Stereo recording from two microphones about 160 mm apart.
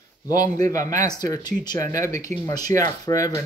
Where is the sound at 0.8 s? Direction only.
50° right (ahead or behind).